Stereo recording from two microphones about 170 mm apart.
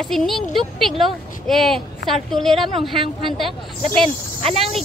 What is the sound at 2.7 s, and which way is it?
Speech, 30° right (ahead or behind).